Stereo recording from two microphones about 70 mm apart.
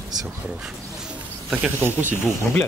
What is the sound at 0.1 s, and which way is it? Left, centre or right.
Speech, right.